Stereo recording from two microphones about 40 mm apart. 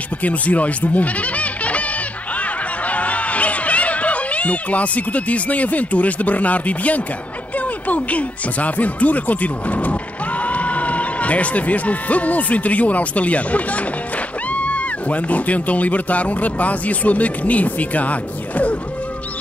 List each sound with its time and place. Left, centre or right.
0.2 s speech: left
2.3 s a sound: left
7.5 s a man's voice: left